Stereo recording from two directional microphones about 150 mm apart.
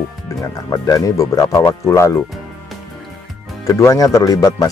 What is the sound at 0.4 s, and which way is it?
Speech, 25° left (ahead or behind).